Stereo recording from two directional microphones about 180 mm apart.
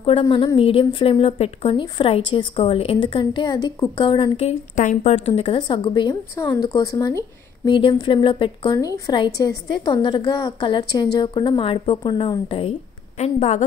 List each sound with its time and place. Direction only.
0.0 s a woman's voice: 30° left (ahead or behind)
4.7 s a woman's voice: 40° left (ahead or behind)